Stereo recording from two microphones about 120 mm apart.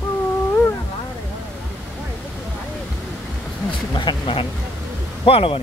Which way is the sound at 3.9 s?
40° left (ahead or behind).